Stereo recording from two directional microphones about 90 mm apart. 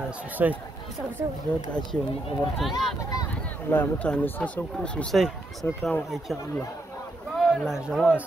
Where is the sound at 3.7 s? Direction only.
20° left (ahead or behind).